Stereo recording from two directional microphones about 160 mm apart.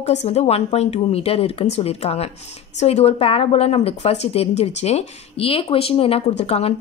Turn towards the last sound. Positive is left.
turn(degrees=40)  # may be behind; listen again after turning